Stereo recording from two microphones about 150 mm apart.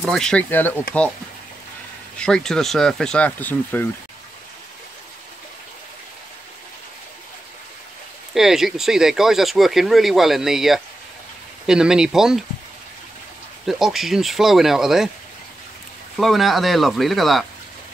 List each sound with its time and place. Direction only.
0.0 s speech: 5° left (ahead or behind)
2.1 s speech: 5° left (ahead or behind)
8.4 s speech: 5° right (ahead or behind)
13.7 s speech: centre (ahead or behind)
16.2 s speech: centre (ahead or behind)